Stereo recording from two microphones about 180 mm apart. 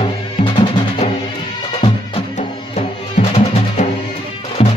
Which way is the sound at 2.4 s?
35° left (ahead or behind).